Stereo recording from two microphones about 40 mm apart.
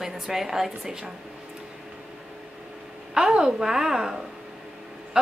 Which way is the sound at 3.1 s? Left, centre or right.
Right.